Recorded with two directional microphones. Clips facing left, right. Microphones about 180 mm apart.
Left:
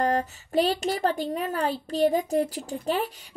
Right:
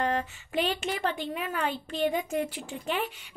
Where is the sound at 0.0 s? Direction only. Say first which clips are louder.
Left 4 dB; 40° left (ahead or behind).